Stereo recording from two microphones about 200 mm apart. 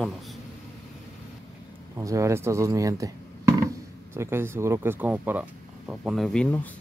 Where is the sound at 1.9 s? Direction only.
15° right (ahead or behind); by 6.6 s 5° left (ahead or behind).